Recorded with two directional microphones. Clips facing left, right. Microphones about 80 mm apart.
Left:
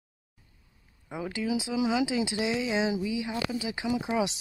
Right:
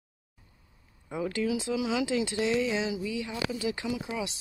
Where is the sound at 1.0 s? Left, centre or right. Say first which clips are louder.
Right 2 dB; centre.